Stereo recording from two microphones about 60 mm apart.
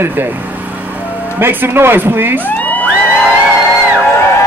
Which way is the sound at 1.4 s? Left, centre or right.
Right.